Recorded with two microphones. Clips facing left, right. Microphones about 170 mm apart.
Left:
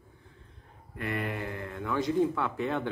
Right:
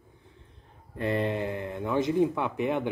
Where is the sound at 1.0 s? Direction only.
25° right (ahead or behind).